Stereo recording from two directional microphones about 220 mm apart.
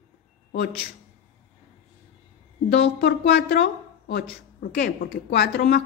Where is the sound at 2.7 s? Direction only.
55° left (ahead or behind).